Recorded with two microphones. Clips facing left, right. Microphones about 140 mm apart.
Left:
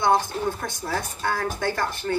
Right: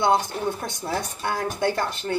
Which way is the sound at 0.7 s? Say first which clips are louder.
Right 1 dB; 20° right (ahead or behind).